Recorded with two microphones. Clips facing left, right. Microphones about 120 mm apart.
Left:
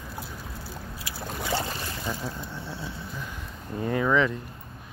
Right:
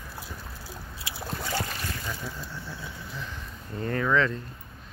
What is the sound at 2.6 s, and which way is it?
Vehicle, 25° left (ahead or behind).